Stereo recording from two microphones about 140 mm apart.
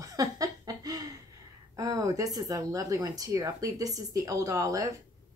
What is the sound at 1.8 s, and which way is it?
Speech, 25° right (ahead or behind).